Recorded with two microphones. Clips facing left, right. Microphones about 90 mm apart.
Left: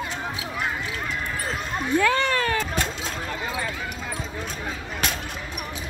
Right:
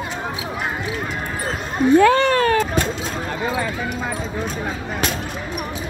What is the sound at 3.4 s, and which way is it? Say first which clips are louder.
Clip-clop: right 9 dB; 85° right.